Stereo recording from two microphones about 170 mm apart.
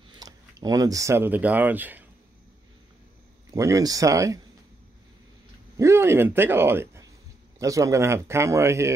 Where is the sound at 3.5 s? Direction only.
20° right (ahead or behind).